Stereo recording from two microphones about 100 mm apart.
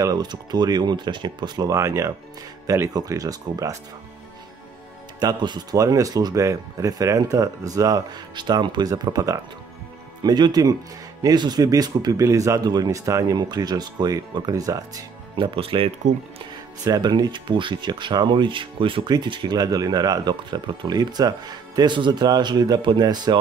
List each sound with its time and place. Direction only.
0.0 s speech: 40° right (ahead or behind)
1.7 s speech: 30° right (ahead or behind)
5.2 s speech: 45° right (ahead or behind)
15.3 s speech: 60° right (ahead or behind)
16.8 s speech: 40° right (ahead or behind)